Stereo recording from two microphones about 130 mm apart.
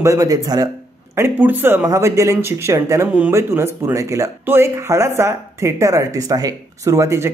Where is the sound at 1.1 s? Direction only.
15° right (ahead or behind).